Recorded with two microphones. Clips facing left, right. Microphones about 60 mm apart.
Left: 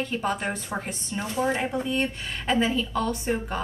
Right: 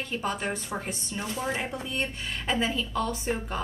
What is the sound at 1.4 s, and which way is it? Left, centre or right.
A woman's voice, centre.